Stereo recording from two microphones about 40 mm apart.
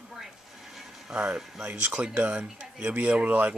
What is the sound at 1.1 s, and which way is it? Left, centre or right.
Speech, right.